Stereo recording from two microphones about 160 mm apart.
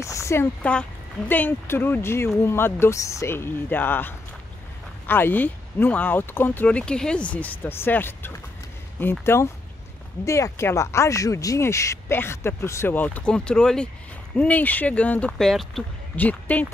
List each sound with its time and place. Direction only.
0.0 s speech: 20° left (ahead or behind)